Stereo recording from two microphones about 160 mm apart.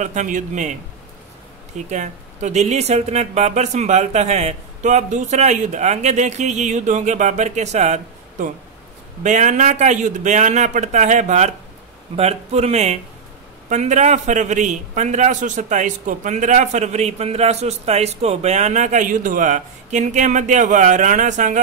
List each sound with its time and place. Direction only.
0.0 s a man's voice: 50° right (ahead or behind)
1.9 s a man's voice: 50° right (ahead or behind)